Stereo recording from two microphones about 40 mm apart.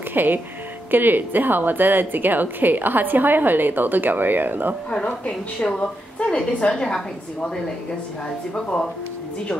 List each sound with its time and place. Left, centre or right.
0.1 s a woman's voice: right
4.9 s a woman's voice: left